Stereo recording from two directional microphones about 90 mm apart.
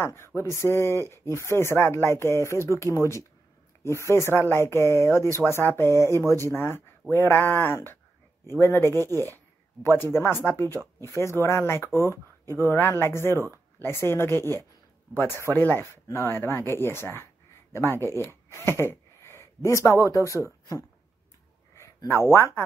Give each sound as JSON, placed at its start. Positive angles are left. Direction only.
{"t": 0.0, "sound": "speech", "side_deg": 30}
{"t": 3.8, "sound": "speech", "side_deg": 30}
{"t": 7.4, "sound": "speech", "side_deg": 20}
{"t": 21.7, "sound": "a sound", "side_deg": 30}